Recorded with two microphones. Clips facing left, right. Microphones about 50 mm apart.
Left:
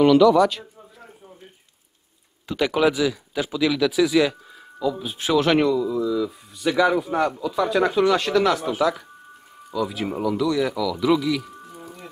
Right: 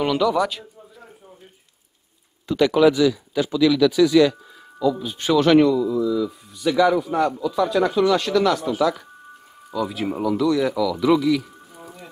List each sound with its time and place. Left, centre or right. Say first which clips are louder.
0.0 s bird: left 5 dB; centre
2.4 s speech: right 4 dB; centre
6.0 s speech: right 1 dB; centre
9.7 s speech: right 1 dB; centre